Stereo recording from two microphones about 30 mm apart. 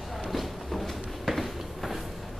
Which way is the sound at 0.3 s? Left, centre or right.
Centre.